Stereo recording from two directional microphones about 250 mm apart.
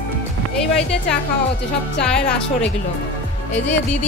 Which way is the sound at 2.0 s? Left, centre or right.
Centre.